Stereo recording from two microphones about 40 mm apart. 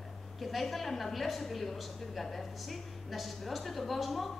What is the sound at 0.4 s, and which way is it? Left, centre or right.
A woman's voice, centre.